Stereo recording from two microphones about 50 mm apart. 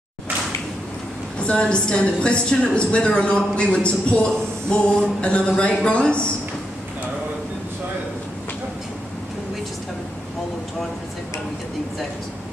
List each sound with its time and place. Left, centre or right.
1.4 s a woman's voice: centre